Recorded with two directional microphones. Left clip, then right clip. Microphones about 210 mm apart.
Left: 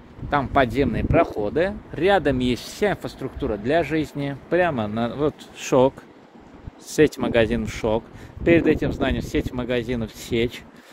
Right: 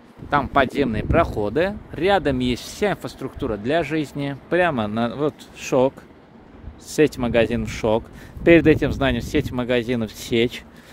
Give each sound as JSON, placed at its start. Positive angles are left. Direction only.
{"t": 0.3, "sound": "speech", "side_deg": -5}
{"t": 2.0, "sound": "speech", "side_deg": 0}
{"t": 5.6, "sound": "speech", "side_deg": 5}
{"t": 6.9, "sound": "speech", "side_deg": -5}
{"t": 8.5, "sound": "speech", "side_deg": -25}